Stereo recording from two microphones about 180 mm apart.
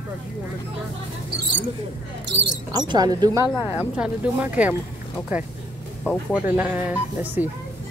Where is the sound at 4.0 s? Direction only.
10° right (ahead or behind).